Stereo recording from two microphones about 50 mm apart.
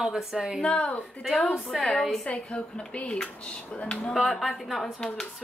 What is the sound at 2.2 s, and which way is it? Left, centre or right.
A woman's voice, left.